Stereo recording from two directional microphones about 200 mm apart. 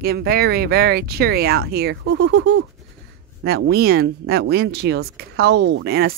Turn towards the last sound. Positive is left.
turn(degrees=-50)  # may be behind; listen again after turning